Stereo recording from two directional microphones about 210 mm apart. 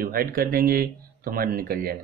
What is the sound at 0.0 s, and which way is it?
Speech, 45° right (ahead or behind).